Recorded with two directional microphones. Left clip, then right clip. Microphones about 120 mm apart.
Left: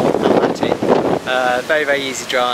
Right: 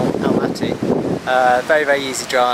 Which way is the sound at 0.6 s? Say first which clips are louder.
Left 5 dB; 50° left (ahead or behind).